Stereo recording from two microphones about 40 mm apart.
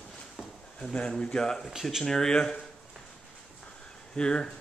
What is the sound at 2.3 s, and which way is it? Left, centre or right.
Speech, left.